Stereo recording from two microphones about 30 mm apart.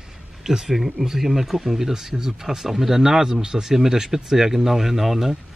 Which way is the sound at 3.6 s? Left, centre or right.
Centre.